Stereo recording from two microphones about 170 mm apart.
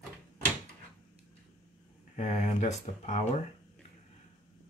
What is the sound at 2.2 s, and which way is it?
Speech, 40° left (ahead or behind).